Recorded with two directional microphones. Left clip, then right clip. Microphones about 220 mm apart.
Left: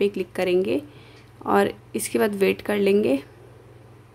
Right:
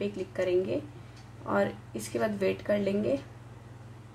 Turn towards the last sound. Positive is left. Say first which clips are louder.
# left 8 dB
turn(degrees=40)  # may be behind; listen again after turning